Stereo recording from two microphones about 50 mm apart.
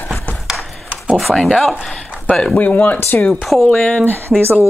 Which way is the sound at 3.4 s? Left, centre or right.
Centre.